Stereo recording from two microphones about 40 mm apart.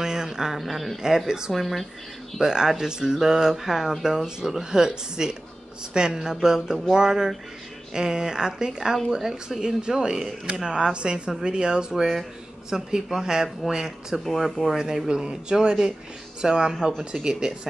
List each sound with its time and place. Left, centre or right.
0.0 s a sound: centre
0.6 s speech: centre
1.0 s speech: centre
1.5 s speech: centre
2.4 s speech: centre
11.9 s speech: centre
15.0 s speech: right